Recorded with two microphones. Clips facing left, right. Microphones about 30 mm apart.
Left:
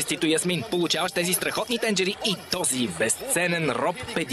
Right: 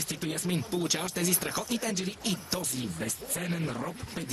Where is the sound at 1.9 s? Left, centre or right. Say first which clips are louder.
Left 8 dB; left.